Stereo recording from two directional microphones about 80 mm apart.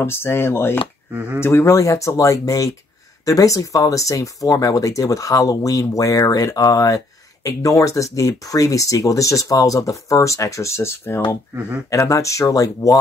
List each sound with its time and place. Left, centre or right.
0.0 s speech: left
1.1 s speech: right
1.4 s speech: left